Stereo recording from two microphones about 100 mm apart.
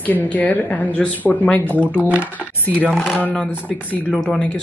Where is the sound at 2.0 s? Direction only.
15° right (ahead or behind).